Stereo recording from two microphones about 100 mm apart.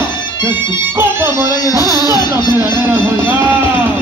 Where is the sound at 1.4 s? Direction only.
40° left (ahead or behind).